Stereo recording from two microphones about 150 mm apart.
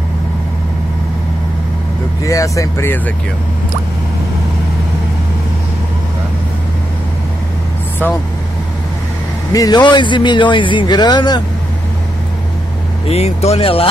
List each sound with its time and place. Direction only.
2.2 s speech: 20° left (ahead or behind)
9.5 s a man's voice: 25° left (ahead or behind)
13.1 s speech: 45° left (ahead or behind)